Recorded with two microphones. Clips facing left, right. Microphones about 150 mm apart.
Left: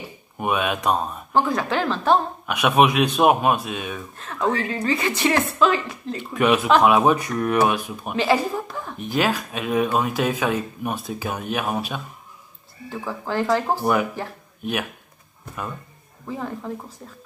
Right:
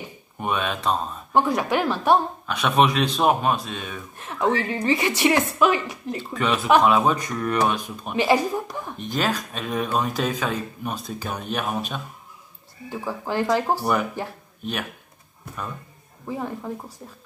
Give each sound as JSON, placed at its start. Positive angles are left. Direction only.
{"t": 0.4, "sound": "speech", "side_deg": 10}
{"t": 1.3, "sound": "a woman's voice", "side_deg": -15}
{"t": 2.4, "sound": "speech", "side_deg": 10}
{"t": 4.2, "sound": "a woman's voice", "side_deg": -20}
{"t": 6.3, "sound": "speech", "side_deg": 15}
{"t": 8.2, "sound": "a woman's voice", "side_deg": -15}
{"t": 9.0, "sound": "speech", "side_deg": 10}
{"t": 12.9, "sound": "a woman's voice", "side_deg": -15}
{"t": 14.6, "sound": "speech", "side_deg": 10}
{"t": 16.3, "sound": "a woman's voice", "side_deg": -20}